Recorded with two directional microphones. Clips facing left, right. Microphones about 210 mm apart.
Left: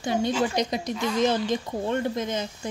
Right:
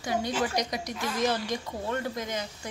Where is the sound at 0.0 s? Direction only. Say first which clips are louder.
Left 4 dB; 25° left (ahead or behind).